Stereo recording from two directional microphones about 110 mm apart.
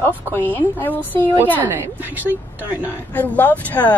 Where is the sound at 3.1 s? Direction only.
15° left (ahead or behind).